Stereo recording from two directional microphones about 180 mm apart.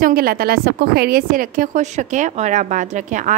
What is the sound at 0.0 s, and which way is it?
A woman's voice, 55° right (ahead or behind).